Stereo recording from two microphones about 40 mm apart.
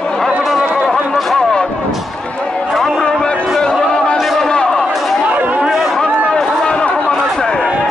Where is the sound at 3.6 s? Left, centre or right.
Centre.